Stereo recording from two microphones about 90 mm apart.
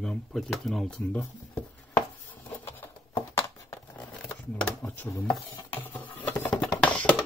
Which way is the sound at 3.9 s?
15° left (ahead or behind).